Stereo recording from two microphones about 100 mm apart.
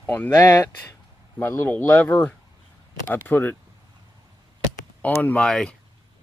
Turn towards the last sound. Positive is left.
turn(degrees=5)  # may be behind; listen again after turning